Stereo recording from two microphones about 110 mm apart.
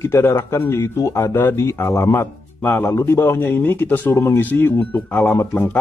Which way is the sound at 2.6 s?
15° left (ahead or behind).